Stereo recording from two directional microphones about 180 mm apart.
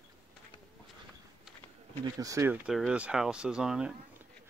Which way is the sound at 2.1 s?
15° right (ahead or behind).